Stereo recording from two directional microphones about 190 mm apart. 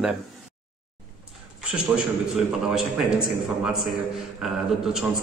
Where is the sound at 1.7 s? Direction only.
5° right (ahead or behind).